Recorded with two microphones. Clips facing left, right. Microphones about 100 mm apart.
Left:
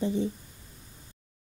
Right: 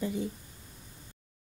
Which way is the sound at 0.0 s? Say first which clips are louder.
Left 5 dB; 25° left (ahead or behind).